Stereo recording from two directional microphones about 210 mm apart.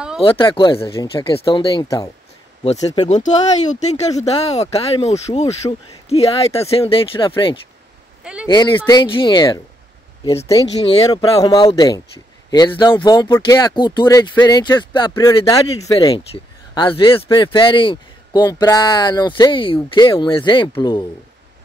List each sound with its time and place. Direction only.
0.2 s a man's voice: 25° left (ahead or behind)
2.6 s speech: 30° left (ahead or behind)
3.9 s speech: 15° left (ahead or behind)
4.3 s a man's voice: 30° left (ahead or behind)
8.2 s a sound: 5° right (ahead or behind)
8.5 s a man's voice: 20° left (ahead or behind)